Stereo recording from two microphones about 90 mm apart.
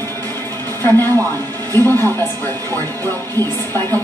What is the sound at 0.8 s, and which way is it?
A woman's voice, 25° left (ahead or behind).